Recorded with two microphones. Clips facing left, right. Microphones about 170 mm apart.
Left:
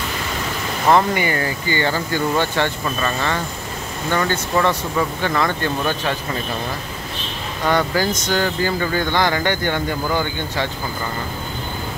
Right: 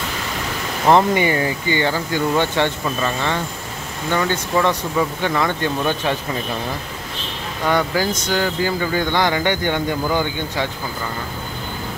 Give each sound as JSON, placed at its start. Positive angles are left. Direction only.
{"t": 0.9, "sound": "speech", "side_deg": -25}
{"t": 7.6, "sound": "speech", "side_deg": -10}